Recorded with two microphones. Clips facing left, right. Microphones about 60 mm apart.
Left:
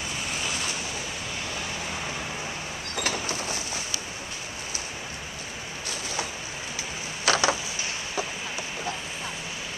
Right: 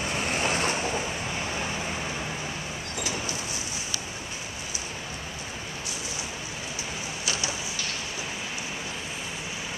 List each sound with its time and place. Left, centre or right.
0.1 s vehicle: right
3.0 s vehicle: left
7.2 s a sound: left